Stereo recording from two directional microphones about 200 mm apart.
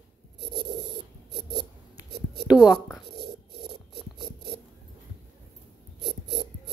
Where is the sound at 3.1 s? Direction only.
55° right (ahead or behind).